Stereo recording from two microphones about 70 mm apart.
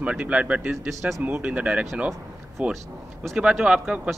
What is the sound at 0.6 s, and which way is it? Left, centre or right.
A man's voice, centre.